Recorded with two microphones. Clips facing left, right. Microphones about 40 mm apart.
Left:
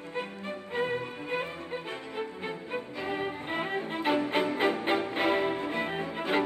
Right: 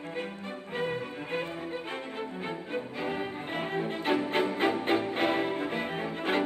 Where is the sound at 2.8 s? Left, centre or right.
Centre.